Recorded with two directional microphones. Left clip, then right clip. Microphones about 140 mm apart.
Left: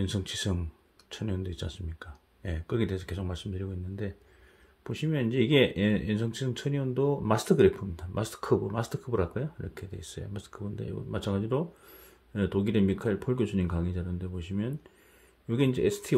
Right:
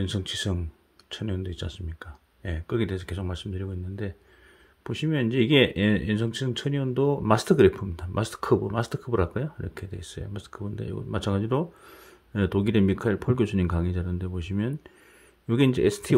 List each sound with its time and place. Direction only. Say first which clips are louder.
0.0 s speech: right 3 dB; 25° right (ahead or behind); by 16.2 s 40° right (ahead or behind)